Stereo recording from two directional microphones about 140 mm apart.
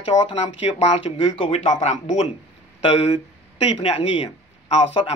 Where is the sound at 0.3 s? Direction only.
50° left (ahead or behind).